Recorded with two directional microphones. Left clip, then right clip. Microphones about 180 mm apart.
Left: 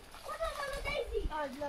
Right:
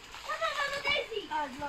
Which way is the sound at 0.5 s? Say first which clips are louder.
Right 7 dB; 40° left (ahead or behind).